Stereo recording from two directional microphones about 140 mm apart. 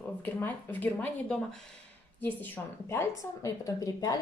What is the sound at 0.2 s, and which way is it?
A woman's voice, 15° left (ahead or behind).